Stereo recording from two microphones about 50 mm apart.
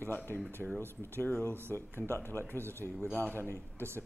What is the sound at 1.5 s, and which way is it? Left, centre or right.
Speech, right.